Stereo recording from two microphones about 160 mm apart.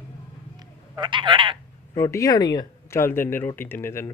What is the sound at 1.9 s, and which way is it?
Speech, 20° left (ahead or behind).